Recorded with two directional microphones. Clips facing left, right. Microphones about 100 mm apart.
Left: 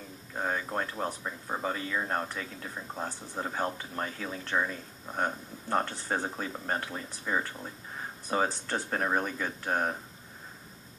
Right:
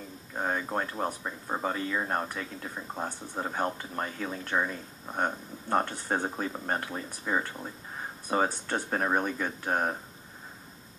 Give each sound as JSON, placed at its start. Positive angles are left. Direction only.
{"t": 0.3, "sound": "speech", "side_deg": -5}
{"t": 6.5, "sound": "speech", "side_deg": -5}